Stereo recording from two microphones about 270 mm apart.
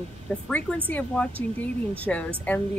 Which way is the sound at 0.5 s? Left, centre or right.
Centre.